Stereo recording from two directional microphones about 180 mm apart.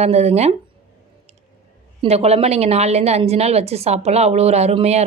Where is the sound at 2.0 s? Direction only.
35° right (ahead or behind).